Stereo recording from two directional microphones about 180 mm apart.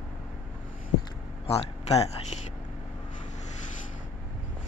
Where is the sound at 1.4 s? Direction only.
35° left (ahead or behind).